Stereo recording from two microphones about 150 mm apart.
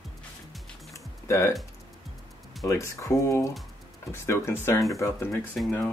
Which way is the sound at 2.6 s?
15° left (ahead or behind).